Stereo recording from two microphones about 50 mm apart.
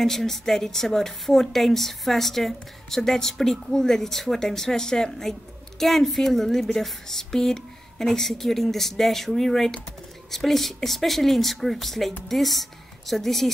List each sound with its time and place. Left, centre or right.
0.0 s a woman's voice: centre